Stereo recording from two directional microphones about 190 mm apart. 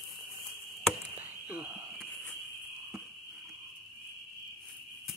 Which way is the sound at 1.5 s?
5° right (ahead or behind).